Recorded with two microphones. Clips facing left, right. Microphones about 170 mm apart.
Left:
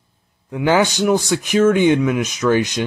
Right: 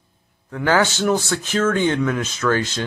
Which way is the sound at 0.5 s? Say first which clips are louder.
Left 3 dB; 15° left (ahead or behind).